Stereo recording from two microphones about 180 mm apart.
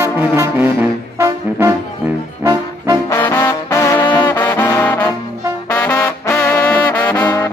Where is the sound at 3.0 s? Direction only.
20° left (ahead or behind).